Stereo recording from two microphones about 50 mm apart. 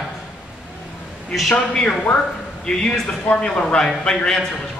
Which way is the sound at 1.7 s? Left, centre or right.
Left.